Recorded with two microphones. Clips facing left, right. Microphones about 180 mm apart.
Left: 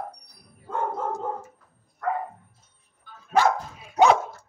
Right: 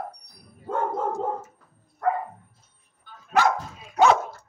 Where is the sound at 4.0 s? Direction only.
15° left (ahead or behind).